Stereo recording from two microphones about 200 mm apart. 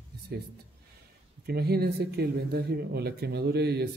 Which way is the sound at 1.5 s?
50° right (ahead or behind).